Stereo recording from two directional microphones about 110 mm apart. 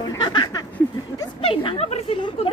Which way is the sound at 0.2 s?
40° left (ahead or behind).